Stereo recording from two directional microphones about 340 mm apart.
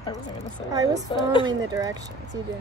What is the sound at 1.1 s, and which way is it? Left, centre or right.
Speech, centre.